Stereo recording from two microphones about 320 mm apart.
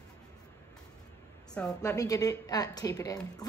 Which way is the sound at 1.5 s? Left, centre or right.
Centre.